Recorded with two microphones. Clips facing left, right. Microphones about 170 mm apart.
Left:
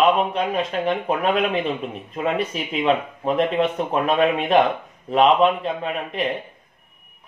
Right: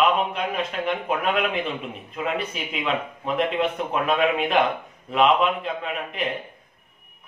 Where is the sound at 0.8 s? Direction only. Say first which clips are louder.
Left 2 dB; 35° left (ahead or behind).